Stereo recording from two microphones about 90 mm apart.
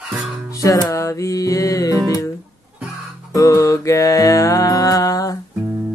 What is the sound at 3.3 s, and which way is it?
Mantra, 40° left (ahead or behind).